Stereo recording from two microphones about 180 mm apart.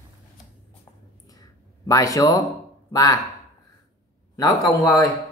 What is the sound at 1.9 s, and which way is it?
A man's voice, 20° left (ahead or behind).